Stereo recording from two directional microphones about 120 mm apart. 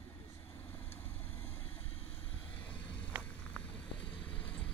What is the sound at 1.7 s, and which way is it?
Vehicle, 55° left (ahead or behind).